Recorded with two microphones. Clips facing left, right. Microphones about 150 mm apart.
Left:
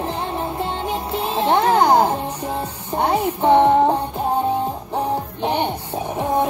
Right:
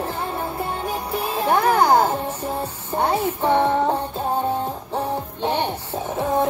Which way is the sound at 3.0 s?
20° left (ahead or behind).